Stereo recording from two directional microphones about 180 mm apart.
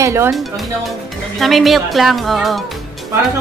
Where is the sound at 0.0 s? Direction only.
15° right (ahead or behind).